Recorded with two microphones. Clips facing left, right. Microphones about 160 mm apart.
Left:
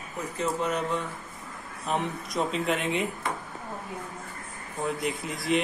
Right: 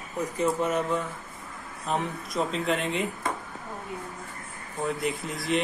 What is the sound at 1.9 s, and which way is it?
Speech, centre (ahead or behind).